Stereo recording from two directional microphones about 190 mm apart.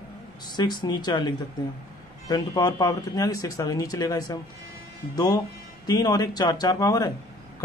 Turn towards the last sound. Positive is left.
turn(degrees=20)  # may be behind; listen again after turning